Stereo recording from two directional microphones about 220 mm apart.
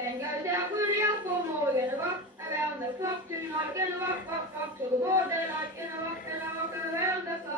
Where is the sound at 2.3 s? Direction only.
10° right (ahead or behind).